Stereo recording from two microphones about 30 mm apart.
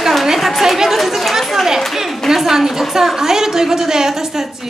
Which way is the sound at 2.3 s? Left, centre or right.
Centre.